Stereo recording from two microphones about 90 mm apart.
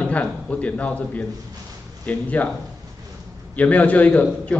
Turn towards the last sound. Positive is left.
turn(degrees=15)  # may be behind; listen again after turning